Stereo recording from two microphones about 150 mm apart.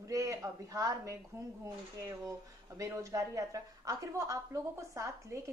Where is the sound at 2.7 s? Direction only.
20° right (ahead or behind).